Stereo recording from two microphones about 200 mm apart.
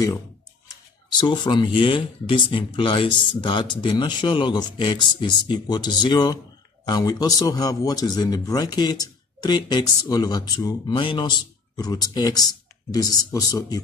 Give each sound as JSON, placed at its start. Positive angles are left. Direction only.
{"t": 1.2, "sound": "a man's voice", "side_deg": 20}